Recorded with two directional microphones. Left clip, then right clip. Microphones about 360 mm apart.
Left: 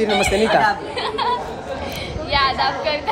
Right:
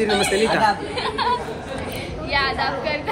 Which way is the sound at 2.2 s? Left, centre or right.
Centre.